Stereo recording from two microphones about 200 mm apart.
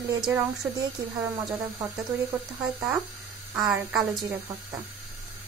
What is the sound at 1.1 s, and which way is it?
Speech, 15° right (ahead or behind).